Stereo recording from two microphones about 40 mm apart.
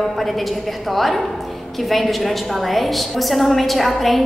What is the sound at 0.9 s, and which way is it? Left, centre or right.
A woman's voice, centre.